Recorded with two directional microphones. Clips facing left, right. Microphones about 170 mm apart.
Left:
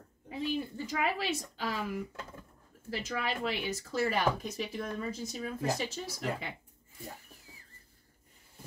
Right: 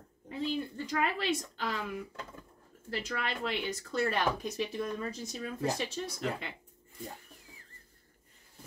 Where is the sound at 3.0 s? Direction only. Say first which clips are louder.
Left 2 dB; 10° left (ahead or behind).